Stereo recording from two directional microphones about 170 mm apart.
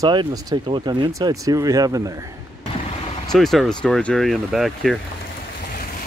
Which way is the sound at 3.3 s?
Centre (ahead or behind).